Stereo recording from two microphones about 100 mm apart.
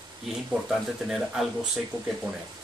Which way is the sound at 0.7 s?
5° right (ahead or behind).